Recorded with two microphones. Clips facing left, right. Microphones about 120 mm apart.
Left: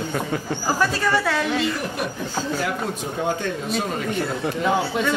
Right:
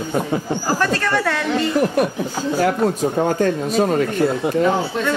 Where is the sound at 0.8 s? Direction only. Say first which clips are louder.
Left 1 dB; 5° left (ahead or behind).